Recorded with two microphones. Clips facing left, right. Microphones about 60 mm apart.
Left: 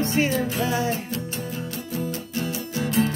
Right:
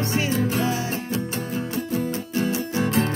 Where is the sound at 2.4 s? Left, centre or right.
Right.